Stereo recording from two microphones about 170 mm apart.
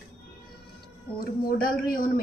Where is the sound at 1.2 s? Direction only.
60° left (ahead or behind).